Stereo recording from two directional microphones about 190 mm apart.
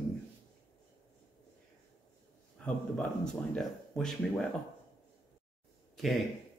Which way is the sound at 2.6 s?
5° left (ahead or behind).